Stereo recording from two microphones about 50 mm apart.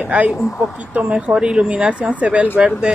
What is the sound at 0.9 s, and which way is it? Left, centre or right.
Speech, right.